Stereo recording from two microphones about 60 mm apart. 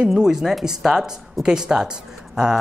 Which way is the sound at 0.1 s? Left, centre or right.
Centre.